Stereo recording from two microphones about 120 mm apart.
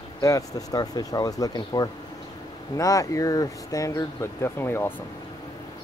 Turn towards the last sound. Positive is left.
turn(degrees=20)  # may be behind; listen again after turning